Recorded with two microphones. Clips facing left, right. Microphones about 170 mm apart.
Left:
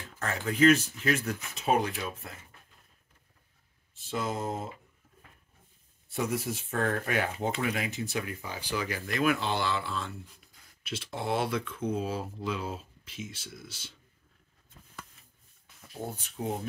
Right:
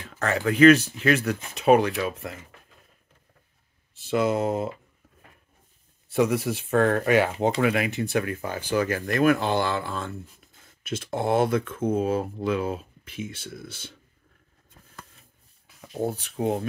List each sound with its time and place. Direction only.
0.2 s speech: 75° right (ahead or behind)
3.9 s speech: 75° right (ahead or behind)
6.0 s speech: 90° right
7.6 s speech: 70° right (ahead or behind)
16.1 s speech: 75° right (ahead or behind)